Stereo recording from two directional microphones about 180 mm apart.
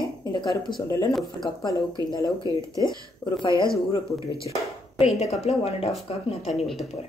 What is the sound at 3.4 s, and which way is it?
Speech, 25° left (ahead or behind).